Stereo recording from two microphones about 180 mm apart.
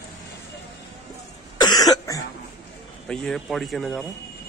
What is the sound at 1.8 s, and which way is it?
Cough, 20° left (ahead or behind).